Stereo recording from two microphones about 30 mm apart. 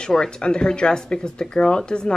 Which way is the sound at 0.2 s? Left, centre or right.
Left.